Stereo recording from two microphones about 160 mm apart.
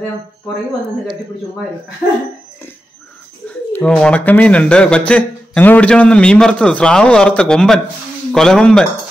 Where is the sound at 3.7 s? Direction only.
5° left (ahead or behind).